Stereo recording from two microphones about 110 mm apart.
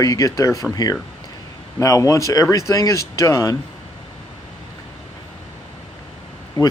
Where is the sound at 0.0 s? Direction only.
30° left (ahead or behind).